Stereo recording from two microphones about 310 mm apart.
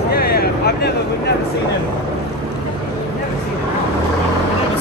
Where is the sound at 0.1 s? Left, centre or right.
Left.